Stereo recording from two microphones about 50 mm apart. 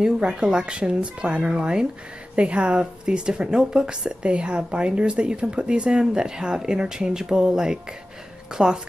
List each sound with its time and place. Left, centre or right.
0.0 s a woman's voice: centre